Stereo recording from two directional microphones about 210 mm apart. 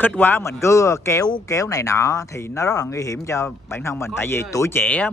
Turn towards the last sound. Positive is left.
turn(degrees=5)  # may be behind; listen again after turning